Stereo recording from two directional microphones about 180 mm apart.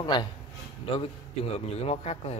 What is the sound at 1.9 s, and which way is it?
Speech, 35° left (ahead or behind).